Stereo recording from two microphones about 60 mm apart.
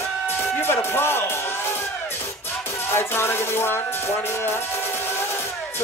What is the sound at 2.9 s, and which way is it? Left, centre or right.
Speech, left.